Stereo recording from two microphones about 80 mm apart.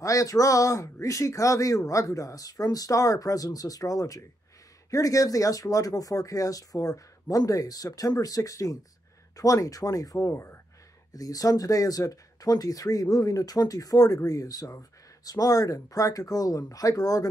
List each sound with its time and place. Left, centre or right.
0.0 s speech: left
11.1 s speech: left